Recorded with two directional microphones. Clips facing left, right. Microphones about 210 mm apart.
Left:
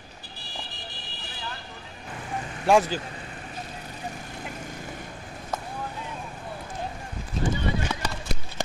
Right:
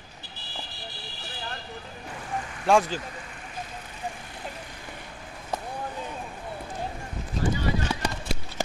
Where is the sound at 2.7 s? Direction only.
5° left (ahead or behind).